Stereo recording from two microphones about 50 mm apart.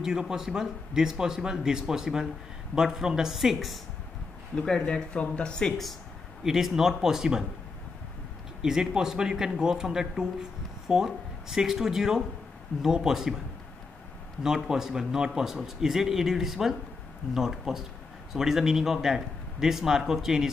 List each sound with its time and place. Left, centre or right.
0.0 s a man's voice: centre
4.6 s speech: centre
6.4 s a man's voice: centre
8.6 s a man's voice: centre
10.9 s speech: right
11.4 s a man's voice: centre
14.4 s a man's voice: centre